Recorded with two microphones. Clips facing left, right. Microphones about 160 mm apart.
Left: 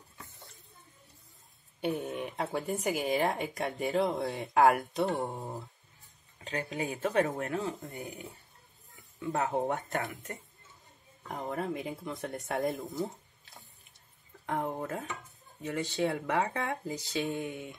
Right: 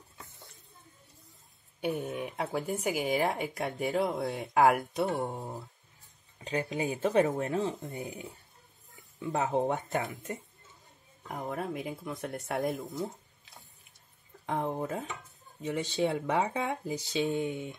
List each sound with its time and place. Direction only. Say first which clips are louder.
1.8 s speech: even; centre (ahead or behind)
6.4 s speech: right 3 dB; 20° right (ahead or behind)
6.9 s speech: right 3 dB; centre (ahead or behind)
7.2 s speech: right 3 dB; 20° right (ahead or behind)
11.2 s speech: left 1 dB; centre (ahead or behind)
14.4 s speech: right 1 dB; 15° right (ahead or behind)